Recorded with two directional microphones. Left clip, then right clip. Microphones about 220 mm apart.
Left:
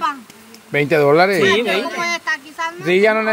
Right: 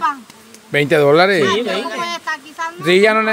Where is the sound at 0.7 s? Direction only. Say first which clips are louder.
Right 2 dB; 10° right (ahead or behind).